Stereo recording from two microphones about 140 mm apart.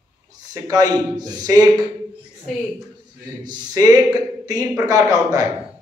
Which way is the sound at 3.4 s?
30° right (ahead or behind).